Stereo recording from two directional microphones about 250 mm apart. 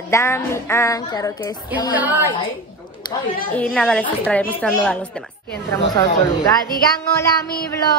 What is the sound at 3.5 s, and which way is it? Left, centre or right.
Speech, centre.